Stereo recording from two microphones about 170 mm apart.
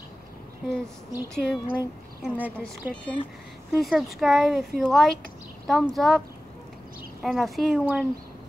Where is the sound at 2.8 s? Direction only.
10° right (ahead or behind).